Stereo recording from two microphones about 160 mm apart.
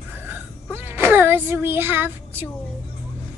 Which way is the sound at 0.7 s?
15° right (ahead or behind).